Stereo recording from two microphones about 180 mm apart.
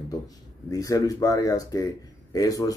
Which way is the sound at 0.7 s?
20° left (ahead or behind).